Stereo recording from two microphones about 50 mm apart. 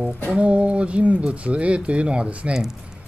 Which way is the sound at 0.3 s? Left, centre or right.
Right.